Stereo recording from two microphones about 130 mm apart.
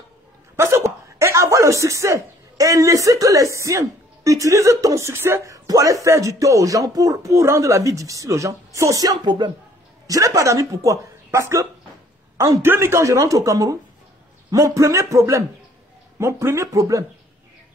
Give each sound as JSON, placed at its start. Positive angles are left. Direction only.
{"t": 0.6, "sound": "a woman's voice", "side_deg": -20}